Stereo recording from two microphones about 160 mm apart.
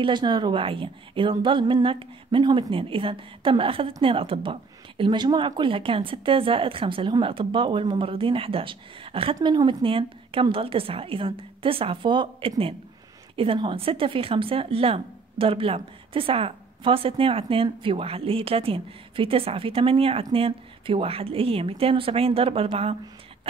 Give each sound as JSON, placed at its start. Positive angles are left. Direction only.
{"t": 0.0, "sound": "speech", "side_deg": -30}